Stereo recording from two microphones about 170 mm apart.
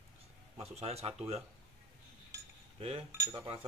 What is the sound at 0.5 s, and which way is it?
Speech, 35° right (ahead or behind).